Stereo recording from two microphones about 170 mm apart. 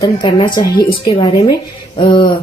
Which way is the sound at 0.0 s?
25° left (ahead or behind).